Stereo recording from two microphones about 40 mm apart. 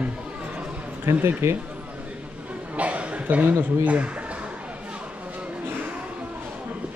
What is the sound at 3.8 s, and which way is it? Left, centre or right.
Speech, right.